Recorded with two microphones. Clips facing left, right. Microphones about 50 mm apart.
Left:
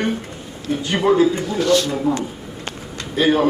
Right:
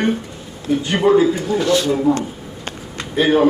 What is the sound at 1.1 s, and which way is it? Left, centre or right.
Speech, centre.